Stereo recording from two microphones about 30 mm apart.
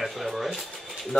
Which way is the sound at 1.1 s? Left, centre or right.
Centre.